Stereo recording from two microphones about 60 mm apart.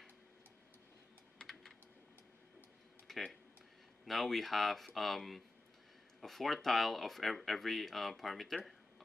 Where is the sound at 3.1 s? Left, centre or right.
Centre.